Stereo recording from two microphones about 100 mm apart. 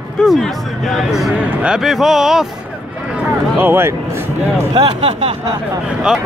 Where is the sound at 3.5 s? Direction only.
20° right (ahead or behind).